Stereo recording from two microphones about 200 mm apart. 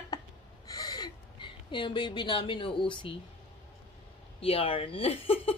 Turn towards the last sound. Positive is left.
turn(degrees=30)  # may be behind; listen again after turning